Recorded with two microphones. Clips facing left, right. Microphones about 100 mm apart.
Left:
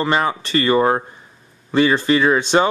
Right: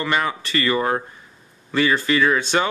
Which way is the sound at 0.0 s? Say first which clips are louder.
Left 4 dB; 25° left (ahead or behind).